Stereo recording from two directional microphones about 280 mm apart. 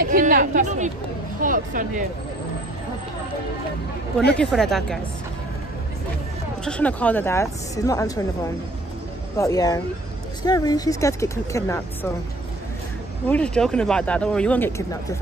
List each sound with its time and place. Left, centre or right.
0.0 s a woman's voice: right
4.4 s speech: centre
6.6 s speech: centre
9.4 s speech: centre
13.3 s speech: centre